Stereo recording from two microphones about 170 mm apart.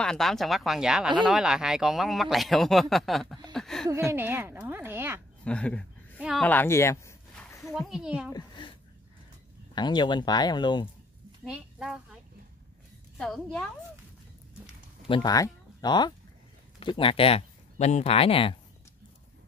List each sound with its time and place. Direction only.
0.0 s speech: 5° left (ahead or behind)
3.9 s a woman's voice: 15° right (ahead or behind)
5.4 s a sound: 5° left (ahead or behind)
6.4 s speech: 10° left (ahead or behind)
7.7 s speech: centre (ahead or behind)
8.3 s a sound: 25° left (ahead or behind)
9.8 s speech: 25° left (ahead or behind)
11.4 s speech: 5° right (ahead or behind)
13.2 s speech: 5° left (ahead or behind)
15.0 s speech: 25° left (ahead or behind)